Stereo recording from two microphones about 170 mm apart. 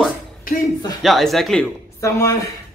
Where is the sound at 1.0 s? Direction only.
Centre (ahead or behind).